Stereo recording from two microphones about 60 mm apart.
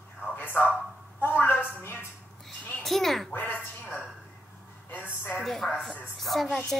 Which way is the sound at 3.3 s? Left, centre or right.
Left.